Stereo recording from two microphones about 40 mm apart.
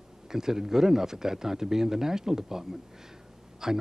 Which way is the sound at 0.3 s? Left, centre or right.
Centre.